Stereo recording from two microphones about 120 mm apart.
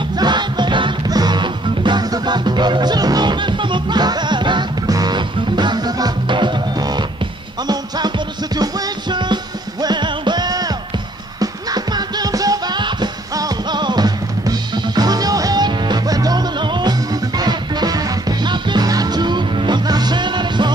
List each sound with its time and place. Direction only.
0.2 s music: 40° right (ahead or behind)
9.1 s music: 35° right (ahead or behind)